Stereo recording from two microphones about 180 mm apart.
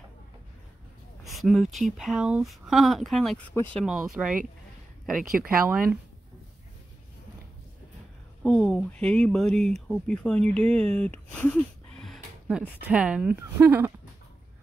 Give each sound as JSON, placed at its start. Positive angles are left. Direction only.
{"t": 1.2, "sound": "speech", "side_deg": 0}
{"t": 8.5, "sound": "speech", "side_deg": 5}